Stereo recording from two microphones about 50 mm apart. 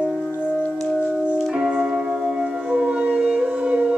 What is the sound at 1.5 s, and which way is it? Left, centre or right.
Music, centre.